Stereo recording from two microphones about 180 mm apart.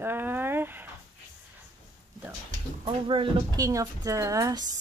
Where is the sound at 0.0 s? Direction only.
10° right (ahead or behind).